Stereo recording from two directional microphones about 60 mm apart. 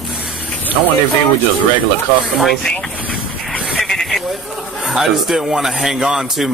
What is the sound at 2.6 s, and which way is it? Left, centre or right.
Vehicle, centre.